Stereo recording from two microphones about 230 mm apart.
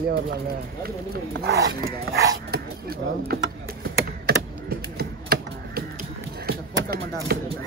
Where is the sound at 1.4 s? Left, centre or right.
Right.